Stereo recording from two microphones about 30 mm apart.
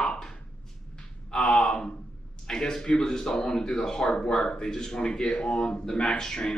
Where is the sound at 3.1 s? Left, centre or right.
Centre.